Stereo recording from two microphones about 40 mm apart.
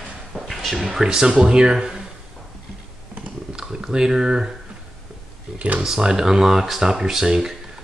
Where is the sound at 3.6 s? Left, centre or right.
Centre.